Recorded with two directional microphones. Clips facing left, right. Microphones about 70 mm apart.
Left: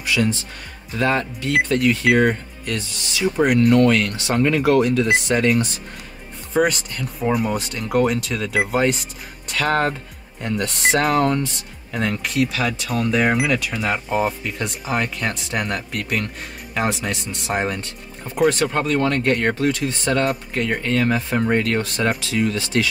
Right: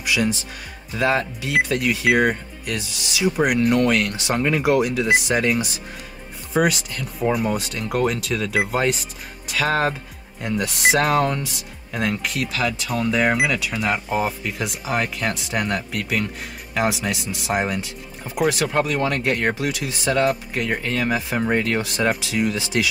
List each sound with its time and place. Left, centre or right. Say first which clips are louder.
0.0 s speech: left 1 dB; centre